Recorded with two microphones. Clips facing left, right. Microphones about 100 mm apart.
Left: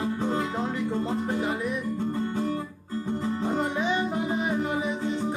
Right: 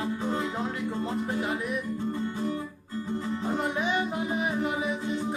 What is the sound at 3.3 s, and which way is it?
Music, 35° left (ahead or behind).